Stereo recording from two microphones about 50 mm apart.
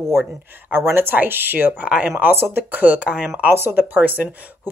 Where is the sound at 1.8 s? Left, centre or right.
Right.